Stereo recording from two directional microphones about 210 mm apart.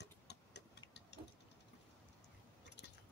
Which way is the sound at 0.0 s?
55° left (ahead or behind).